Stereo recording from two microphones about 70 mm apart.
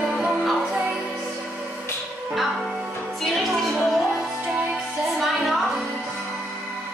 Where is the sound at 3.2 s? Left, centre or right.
Centre.